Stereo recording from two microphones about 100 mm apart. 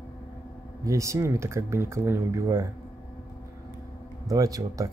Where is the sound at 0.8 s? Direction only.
30° right (ahead or behind).